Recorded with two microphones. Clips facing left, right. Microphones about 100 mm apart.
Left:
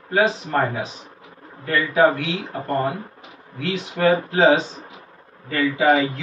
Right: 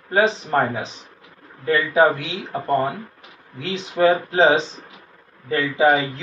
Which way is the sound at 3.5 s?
25° right (ahead or behind).